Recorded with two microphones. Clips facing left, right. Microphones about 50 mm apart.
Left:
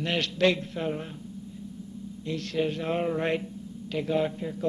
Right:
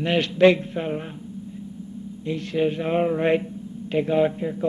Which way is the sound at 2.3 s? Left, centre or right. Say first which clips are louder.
Right 5 dB; centre.